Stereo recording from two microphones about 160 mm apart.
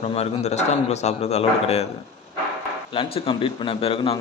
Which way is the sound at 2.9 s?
35° left (ahead or behind).